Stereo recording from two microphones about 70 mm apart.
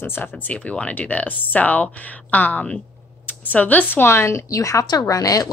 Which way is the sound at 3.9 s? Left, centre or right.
Left.